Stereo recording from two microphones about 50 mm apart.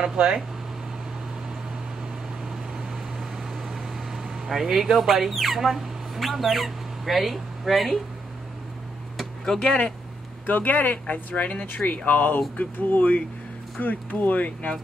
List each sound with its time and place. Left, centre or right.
0.0 s speech: centre
3.7 s speech: centre
9.1 s a sound: centre
10.4 s speech: left